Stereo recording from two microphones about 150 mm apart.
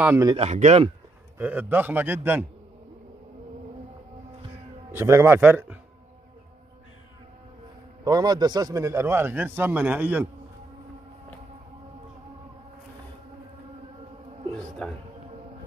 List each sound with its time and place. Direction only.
0.0 s a man's voice: 15° right (ahead or behind)
0.4 s speech: 50° right (ahead or behind)
1.4 s a man's voice: 10° right (ahead or behind)
4.9 s a man's voice: 15° right (ahead or behind)
8.0 s a man's voice: 25° right (ahead or behind); by 10.2 s 10° right (ahead or behind)
14.8 s speech: 10° left (ahead or behind)